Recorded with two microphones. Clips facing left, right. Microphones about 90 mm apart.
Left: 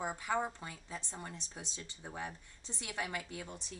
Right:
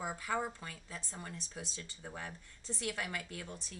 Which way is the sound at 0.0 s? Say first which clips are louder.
Left 1 dB; 20° left (ahead or behind).